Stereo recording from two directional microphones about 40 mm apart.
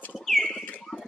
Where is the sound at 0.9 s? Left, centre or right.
Centre.